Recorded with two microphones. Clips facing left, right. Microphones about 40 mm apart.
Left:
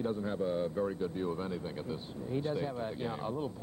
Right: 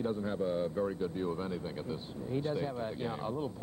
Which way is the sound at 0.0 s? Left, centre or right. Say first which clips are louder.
Even; centre.